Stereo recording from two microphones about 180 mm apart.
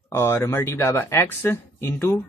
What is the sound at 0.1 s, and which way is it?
Speech, 15° left (ahead or behind).